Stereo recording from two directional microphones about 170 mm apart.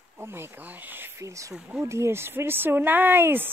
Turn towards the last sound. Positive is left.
turn(degrees=-10)  # may be behind; listen again after turning